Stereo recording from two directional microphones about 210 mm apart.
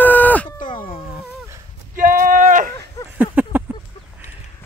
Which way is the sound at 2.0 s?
40° right (ahead or behind).